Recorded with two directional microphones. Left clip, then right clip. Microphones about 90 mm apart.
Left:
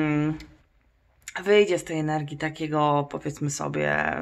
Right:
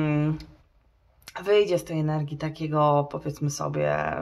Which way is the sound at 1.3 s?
30° left (ahead or behind).